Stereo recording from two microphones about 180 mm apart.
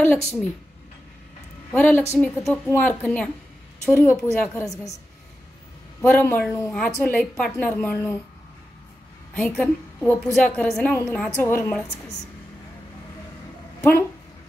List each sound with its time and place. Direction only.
0.0 s speech: 10° left (ahead or behind)
1.7 s speech: 10° left (ahead or behind)
5.9 s a woman's voice: 10° left (ahead or behind)
9.3 s a woman's voice: 5° left (ahead or behind)